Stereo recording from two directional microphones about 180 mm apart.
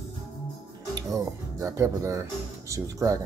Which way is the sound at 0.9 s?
15° right (ahead or behind).